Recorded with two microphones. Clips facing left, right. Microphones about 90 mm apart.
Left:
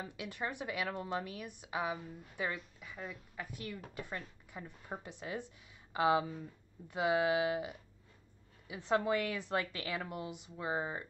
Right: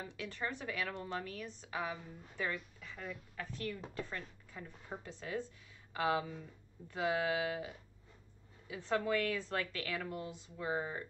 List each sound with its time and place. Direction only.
0.0 s a woman's voice: 15° left (ahead or behind)